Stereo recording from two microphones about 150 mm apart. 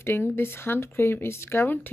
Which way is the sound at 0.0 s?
15° left (ahead or behind).